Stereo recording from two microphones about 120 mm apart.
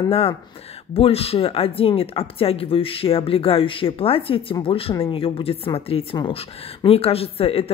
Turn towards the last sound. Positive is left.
turn(degrees=55)  # may be behind; listen again after turning